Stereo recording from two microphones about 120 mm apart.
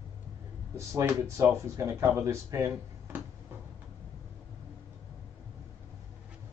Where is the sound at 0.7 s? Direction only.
25° right (ahead or behind).